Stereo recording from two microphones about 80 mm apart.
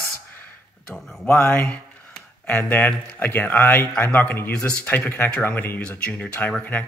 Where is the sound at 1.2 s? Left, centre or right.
Left.